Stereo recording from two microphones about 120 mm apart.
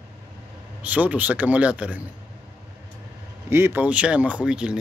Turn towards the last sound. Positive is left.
turn(degrees=-10)  # may be behind; listen again after turning